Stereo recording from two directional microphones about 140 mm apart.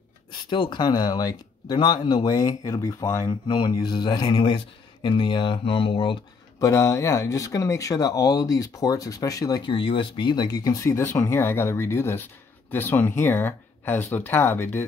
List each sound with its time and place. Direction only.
0.5 s speech: 35° left (ahead or behind)
6.6 s speech: 25° left (ahead or behind)